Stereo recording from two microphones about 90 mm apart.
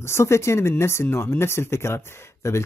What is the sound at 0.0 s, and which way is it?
A man's voice, 30° left (ahead or behind).